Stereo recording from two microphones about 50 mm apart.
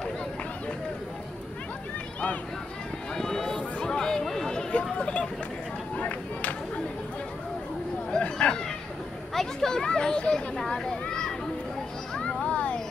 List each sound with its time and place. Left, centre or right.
3.2 s run: centre; by 6.5 s left
8.2 s a sound: left
9.3 s speech: centre
10.6 s children playing: centre